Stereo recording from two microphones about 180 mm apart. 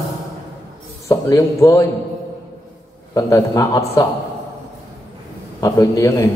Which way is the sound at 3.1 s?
20° left (ahead or behind).